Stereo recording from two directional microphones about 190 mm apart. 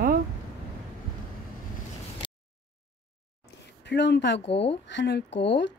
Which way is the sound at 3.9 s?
65° left (ahead or behind).